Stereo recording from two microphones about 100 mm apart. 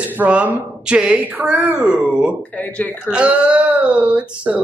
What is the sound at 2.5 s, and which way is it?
Speech, 15° left (ahead or behind).